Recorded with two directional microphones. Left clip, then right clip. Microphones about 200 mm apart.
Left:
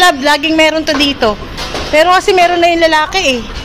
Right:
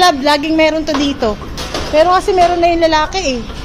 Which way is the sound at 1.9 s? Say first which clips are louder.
Left 2 dB; 5° left (ahead or behind).